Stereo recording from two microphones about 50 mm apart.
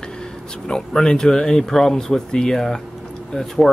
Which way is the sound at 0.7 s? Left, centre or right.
Centre.